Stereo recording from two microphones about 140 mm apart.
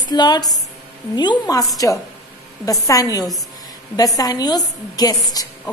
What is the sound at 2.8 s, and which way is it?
A woman's voice, 25° left (ahead or behind).